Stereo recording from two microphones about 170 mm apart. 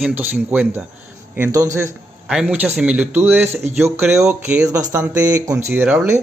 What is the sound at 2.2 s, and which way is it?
Speech, 5° right (ahead or behind).